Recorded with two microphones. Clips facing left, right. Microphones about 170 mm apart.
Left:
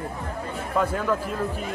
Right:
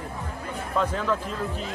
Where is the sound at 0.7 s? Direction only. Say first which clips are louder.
Left 2 dB; 10° left (ahead or behind).